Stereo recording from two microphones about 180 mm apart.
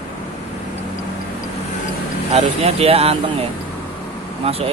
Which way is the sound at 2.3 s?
35° right (ahead or behind).